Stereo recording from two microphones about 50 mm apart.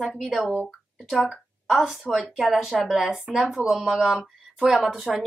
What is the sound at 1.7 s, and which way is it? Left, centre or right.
A woman's voice, centre.